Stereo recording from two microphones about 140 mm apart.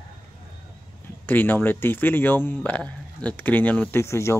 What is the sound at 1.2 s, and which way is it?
Speech, 15° left (ahead or behind).